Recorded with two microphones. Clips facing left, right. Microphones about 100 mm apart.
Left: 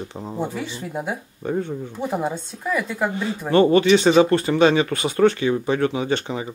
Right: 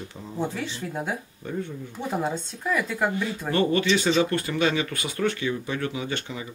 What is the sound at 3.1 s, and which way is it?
Speech, 30° left (ahead or behind).